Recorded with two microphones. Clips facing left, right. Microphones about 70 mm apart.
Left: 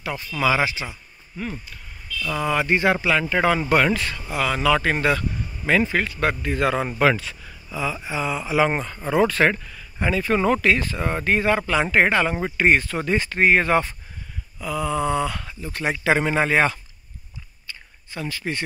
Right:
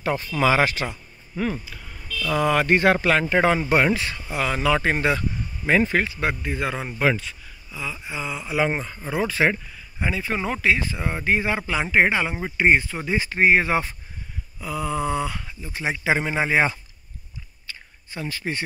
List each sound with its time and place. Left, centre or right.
0.0 s speech: right
1.4 s speech: right
2.4 s speech: right
3.3 s speech: right
6.0 s speech: centre
18.1 s speech: right